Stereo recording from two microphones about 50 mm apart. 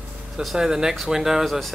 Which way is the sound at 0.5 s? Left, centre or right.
Centre.